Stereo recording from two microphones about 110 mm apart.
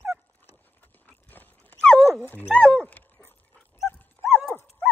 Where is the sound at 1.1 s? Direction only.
15° left (ahead or behind).